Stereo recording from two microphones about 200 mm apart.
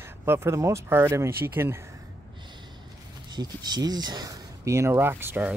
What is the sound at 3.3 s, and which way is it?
Speech, 20° right (ahead or behind).